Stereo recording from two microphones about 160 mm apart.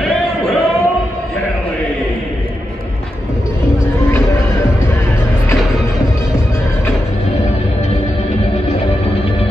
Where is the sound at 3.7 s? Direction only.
20° left (ahead or behind).